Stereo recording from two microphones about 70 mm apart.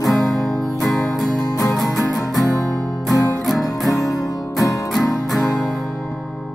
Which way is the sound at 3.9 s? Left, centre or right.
Left.